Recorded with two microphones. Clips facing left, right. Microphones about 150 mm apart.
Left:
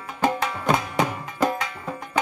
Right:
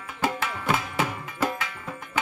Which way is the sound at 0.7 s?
40° left (ahead or behind).